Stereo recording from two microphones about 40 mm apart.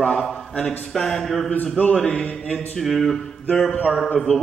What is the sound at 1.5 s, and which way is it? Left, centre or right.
A man's voice, left.